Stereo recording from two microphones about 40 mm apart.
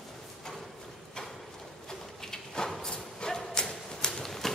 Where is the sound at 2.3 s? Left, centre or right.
Centre.